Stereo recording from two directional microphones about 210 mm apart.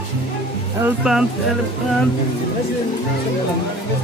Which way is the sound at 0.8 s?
5° right (ahead or behind).